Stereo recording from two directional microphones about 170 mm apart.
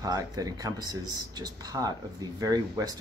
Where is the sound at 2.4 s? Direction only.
20° right (ahead or behind).